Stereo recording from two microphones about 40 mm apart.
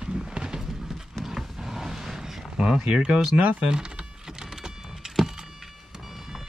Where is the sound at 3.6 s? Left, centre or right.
Right.